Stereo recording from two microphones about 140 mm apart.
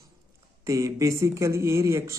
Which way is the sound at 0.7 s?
25° right (ahead or behind).